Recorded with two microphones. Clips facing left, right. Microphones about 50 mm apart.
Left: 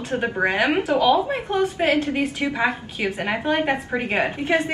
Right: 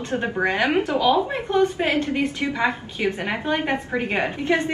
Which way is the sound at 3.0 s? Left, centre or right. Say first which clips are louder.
Left 1 dB; centre.